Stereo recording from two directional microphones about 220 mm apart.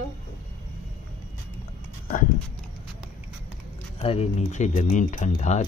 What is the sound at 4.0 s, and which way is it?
Speech, 25° left (ahead or behind).